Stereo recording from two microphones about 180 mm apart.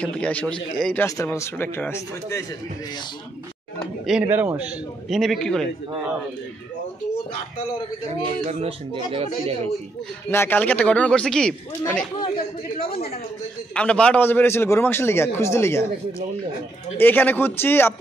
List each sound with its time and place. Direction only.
0.0 s a man's voice: 5° left (ahead or behind)
1.0 s a man's voice: 15° left (ahead or behind)
4.0 s a man's voice: 5° right (ahead or behind)
8.1 s a man's voice: 35° right (ahead or behind)
10.3 s a man's voice: 10° left (ahead or behind)
12.9 s speech: 35° left (ahead or behind)
13.7 s a man's voice: 5° left (ahead or behind)